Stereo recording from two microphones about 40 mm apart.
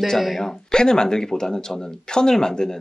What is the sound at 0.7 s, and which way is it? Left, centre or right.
Speech, centre.